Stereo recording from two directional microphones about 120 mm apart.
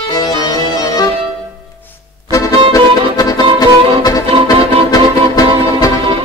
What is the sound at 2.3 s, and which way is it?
Music, 30° left (ahead or behind).